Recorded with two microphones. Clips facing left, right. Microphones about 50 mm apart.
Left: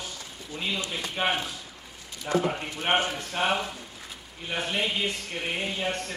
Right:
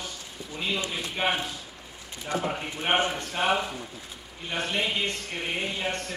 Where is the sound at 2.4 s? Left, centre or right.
Centre.